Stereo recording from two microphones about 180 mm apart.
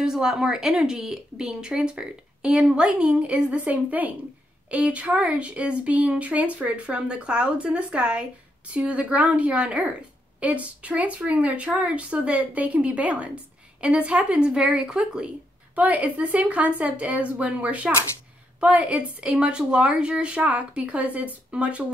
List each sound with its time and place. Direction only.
0.0 s speech: 5° right (ahead or behind)